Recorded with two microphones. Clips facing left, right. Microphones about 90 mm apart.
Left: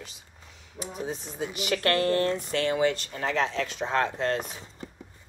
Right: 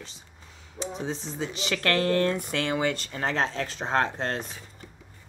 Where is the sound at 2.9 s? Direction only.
40° right (ahead or behind).